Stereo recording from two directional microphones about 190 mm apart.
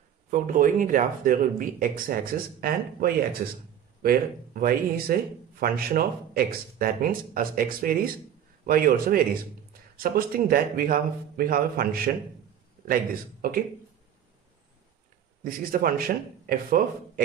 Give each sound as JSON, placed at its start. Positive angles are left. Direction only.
{"t": 0.3, "sound": "a man's voice", "side_deg": -45}
{"t": 15.4, "sound": "speech", "side_deg": -50}